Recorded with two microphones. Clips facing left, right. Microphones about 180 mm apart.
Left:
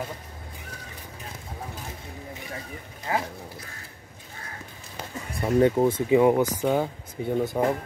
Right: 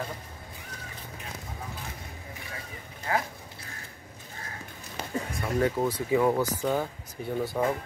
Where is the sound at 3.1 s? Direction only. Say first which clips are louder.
Left 1 dB; 20° left (ahead or behind).